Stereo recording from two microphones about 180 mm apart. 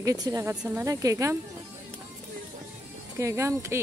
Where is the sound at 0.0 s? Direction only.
20° right (ahead or behind).